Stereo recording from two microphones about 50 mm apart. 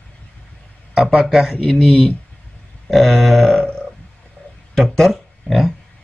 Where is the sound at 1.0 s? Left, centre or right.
Centre.